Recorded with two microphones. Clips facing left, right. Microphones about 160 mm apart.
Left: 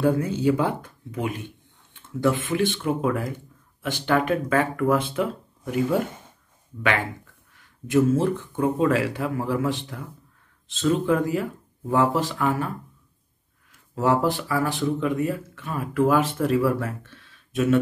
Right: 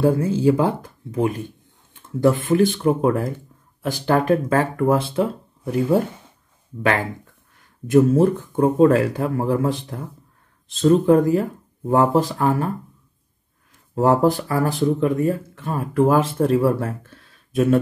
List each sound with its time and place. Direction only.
0.4 s speech: 30° right (ahead or behind)
13.9 s speech: 40° right (ahead or behind)